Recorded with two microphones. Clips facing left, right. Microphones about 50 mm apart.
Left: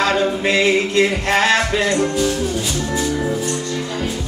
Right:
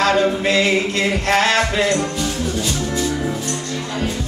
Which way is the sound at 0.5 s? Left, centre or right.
Left.